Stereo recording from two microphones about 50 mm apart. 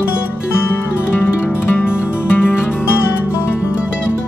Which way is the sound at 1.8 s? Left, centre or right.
Left.